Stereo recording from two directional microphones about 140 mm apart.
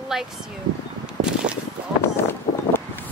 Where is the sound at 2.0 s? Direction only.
15° left (ahead or behind).